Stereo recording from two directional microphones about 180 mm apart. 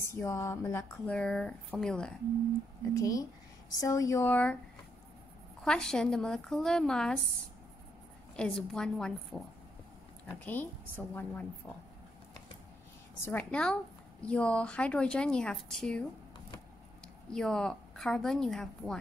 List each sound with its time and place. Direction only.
0.0 s speech: 15° left (ahead or behind)
2.9 s speech: 20° left (ahead or behind)
5.6 s speech: 5° left (ahead or behind)
8.4 s speech: 5° left (ahead or behind)
13.2 s speech: 10° left (ahead or behind)
17.3 s speech: 5° left (ahead or behind)